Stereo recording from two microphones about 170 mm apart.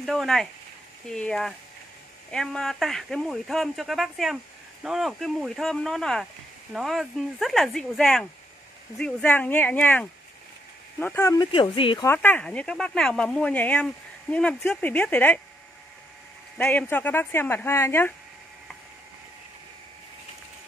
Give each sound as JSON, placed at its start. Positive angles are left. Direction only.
{"t": 0.0, "sound": "speech", "side_deg": 0}
{"t": 11.5, "sound": "speech", "side_deg": 30}
{"t": 12.0, "sound": "speech", "side_deg": 15}
{"t": 16.5, "sound": "speech", "side_deg": 10}